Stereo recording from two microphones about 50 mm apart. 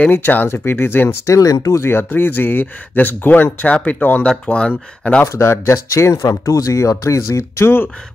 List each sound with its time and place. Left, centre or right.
0.1 s speech: left
1.2 s speech: left
1.9 s speech: left
4.3 s speech: left
5.2 s speech: left